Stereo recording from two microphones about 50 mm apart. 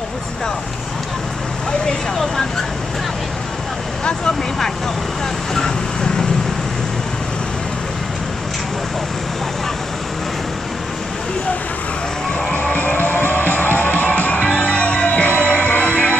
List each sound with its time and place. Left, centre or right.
5.5 s vehicle: centre
12.7 s music: left